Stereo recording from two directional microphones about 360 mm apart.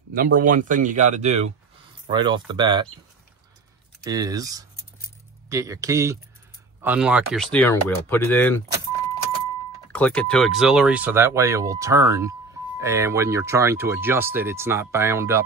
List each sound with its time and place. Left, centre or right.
0.1 s speech: right
4.0 s speech: centre
9.9 s speech: centre